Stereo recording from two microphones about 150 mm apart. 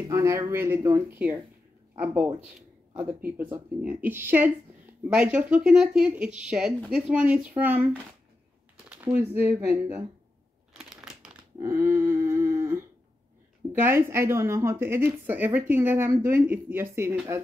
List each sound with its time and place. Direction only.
0.1 s a woman's voice: 20° right (ahead or behind)
10.7 s crumpling: 5° right (ahead or behind)
11.6 s a sound: 15° right (ahead or behind)
13.7 s a woman's voice: 15° right (ahead or behind)